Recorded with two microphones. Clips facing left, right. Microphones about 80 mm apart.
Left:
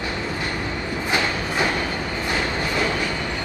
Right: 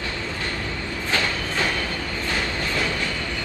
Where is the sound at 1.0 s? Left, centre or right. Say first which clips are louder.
Left 1 dB; centre.